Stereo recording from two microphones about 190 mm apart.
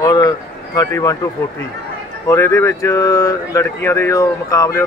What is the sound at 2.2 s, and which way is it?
Speech, 15° left (ahead or behind).